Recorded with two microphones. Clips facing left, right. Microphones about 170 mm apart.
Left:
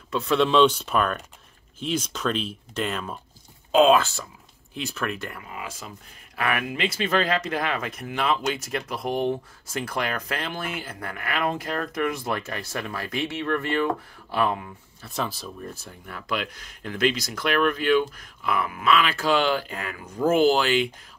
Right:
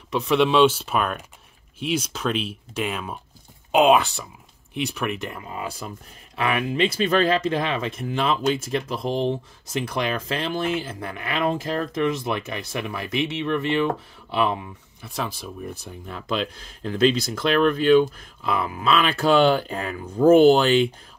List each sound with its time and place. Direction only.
0.1 s speech: 10° right (ahead or behind); by 5.8 s 35° right (ahead or behind)
6.3 s speech: 25° right (ahead or behind)